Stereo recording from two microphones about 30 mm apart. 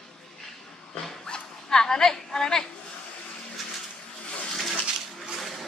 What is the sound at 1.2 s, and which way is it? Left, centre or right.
Dog, left.